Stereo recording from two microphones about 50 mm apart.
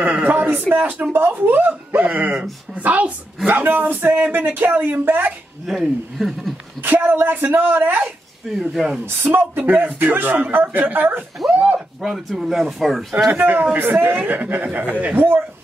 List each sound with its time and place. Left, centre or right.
0.0 s a sound: right
1.1 s speech: right
5.8 s speech: centre
6.8 s speech: right
8.5 s speech: centre
9.0 s speech: right
11.5 s speech: right
12.0 s speech: centre
13.3 s speech: right
15.1 s speech: right